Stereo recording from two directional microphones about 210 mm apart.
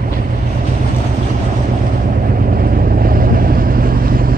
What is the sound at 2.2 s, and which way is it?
Vehicle, 45° right (ahead or behind).